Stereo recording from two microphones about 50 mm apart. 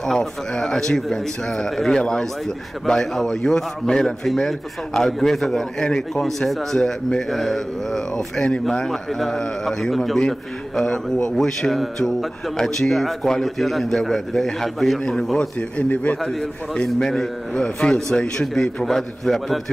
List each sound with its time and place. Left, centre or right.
0.0 s a man's voice: centre
8.4 s a man's voice: centre
15.9 s a man's voice: left
16.2 s a man's voice: centre